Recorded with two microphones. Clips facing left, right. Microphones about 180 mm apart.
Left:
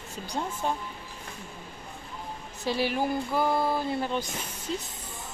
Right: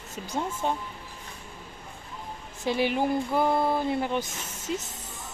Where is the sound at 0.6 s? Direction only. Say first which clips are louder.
Right 1 dB; 20° right (ahead or behind).